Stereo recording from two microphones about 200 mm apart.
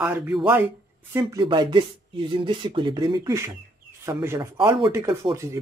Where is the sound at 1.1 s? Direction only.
20° right (ahead or behind).